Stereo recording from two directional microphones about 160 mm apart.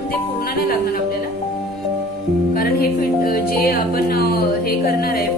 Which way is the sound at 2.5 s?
65° left (ahead or behind).